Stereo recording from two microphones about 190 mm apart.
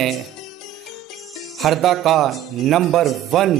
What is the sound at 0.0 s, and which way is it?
Music, centre (ahead or behind).